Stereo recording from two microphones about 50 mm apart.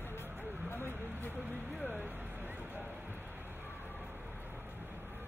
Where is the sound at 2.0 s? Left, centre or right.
Right.